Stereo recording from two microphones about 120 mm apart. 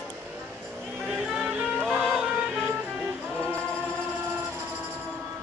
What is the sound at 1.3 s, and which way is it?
Music, centre (ahead or behind).